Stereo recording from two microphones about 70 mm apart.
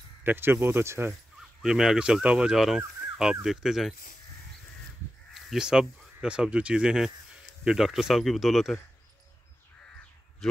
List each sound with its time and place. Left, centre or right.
0.2 s speech: right
1.6 s speech: centre
2.5 s speech: centre
5.3 s speech: centre
10.4 s a man's voice: centre